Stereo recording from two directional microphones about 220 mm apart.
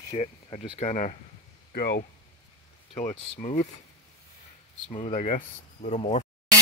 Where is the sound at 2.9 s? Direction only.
30° left (ahead or behind).